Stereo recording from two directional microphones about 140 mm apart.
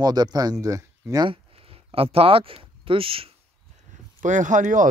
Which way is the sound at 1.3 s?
40° right (ahead or behind).